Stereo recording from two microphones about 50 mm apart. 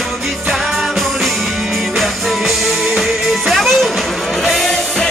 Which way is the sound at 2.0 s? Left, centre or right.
Centre.